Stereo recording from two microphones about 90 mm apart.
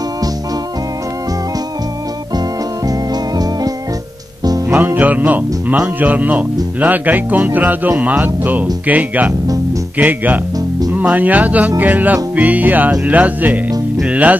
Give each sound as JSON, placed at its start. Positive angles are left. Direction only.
{"t": 2.9, "sound": "music", "side_deg": -45}
{"t": 4.7, "sound": "speech", "side_deg": -20}
{"t": 14.0, "sound": "music", "side_deg": -15}